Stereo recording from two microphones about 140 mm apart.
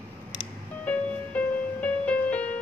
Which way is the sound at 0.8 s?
10° left (ahead or behind).